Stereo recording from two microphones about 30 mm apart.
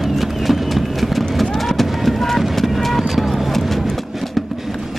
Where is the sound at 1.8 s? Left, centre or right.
Centre.